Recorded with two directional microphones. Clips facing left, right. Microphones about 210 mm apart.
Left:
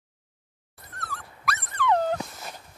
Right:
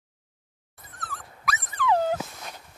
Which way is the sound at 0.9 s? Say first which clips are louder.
Left 1 dB; centre (ahead or behind).